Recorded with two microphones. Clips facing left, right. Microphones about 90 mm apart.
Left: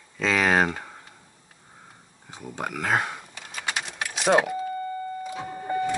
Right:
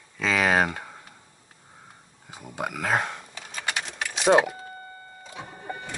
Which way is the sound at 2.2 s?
5° right (ahead or behind).